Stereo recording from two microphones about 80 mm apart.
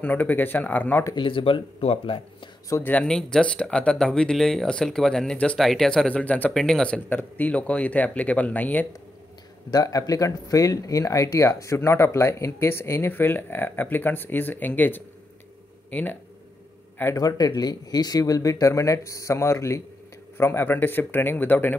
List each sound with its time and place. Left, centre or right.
0.0 s a man's voice: centre
1.1 s speech: left
2.8 s a man's voice: left
3.1 s speech: centre
6.0 s a man's voice: centre
6.5 s speech: centre
9.7 s speech: left; by 16.2 s centre
17.2 s a man's voice: left